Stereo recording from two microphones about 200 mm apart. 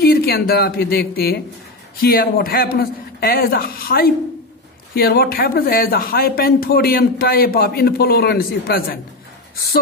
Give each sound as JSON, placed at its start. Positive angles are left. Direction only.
{"t": 0.0, "sound": "speech", "side_deg": 50}